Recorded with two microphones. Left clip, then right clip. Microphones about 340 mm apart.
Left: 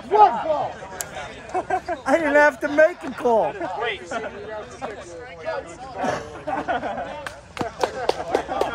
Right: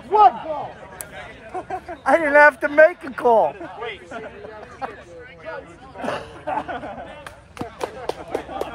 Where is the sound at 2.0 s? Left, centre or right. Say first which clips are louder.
Right 4 dB; centre.